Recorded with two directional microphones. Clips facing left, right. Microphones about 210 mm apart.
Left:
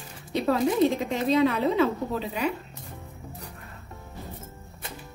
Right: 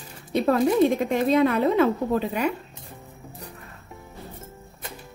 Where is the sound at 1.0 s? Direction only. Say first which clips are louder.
Right 3 dB; 50° right (ahead or behind).